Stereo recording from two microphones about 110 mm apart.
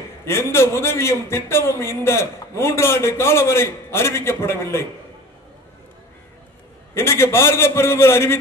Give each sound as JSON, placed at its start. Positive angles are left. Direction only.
{"t": 0.3, "sound": "a man's voice", "side_deg": 25}
{"t": 6.9, "sound": "a man's voice", "side_deg": 25}